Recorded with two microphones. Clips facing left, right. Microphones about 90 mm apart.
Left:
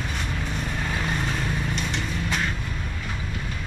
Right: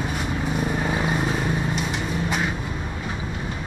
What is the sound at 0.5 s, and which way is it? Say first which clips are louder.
Vehicle: right 6 dB; 15° right (ahead or behind).